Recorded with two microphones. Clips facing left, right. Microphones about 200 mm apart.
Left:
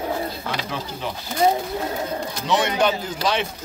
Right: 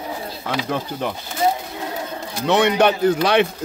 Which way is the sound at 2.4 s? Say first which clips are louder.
Right 5 dB; 60° right (ahead or behind).